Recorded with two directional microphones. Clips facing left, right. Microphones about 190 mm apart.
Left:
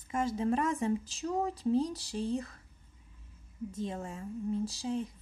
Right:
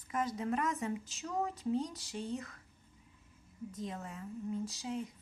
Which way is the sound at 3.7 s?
25° left (ahead or behind).